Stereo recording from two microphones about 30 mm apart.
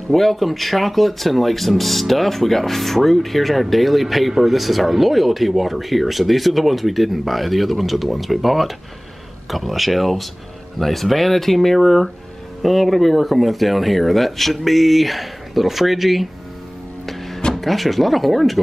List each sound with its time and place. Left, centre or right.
0.1 s speech: centre
17.0 s music: centre
17.6 s speech: centre